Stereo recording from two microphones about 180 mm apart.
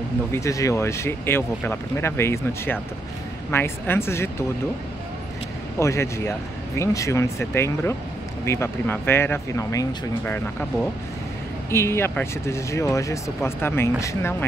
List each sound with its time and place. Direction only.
0.3 s speech: 15° left (ahead or behind)
5.8 s speech: 15° left (ahead or behind)